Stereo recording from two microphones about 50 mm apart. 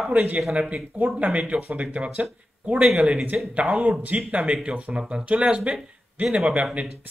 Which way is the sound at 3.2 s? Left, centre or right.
Right.